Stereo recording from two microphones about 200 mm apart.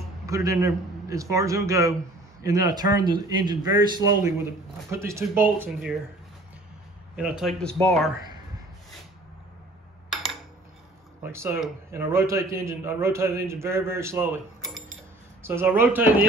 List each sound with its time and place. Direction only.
0.3 s a man's voice: 15° right (ahead or behind)
7.2 s speech: 5° right (ahead or behind)
11.3 s a man's voice: 15° right (ahead or behind)
15.4 s a man's voice: 10° right (ahead or behind)